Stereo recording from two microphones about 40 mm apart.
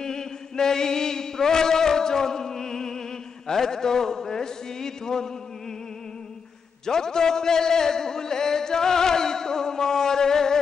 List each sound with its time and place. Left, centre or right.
0.0 s mantra: centre
3.4 s a sound: centre
6.9 s speech: centre